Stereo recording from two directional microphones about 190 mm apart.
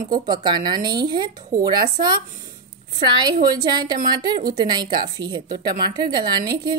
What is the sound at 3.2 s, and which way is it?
Speech, 20° right (ahead or behind).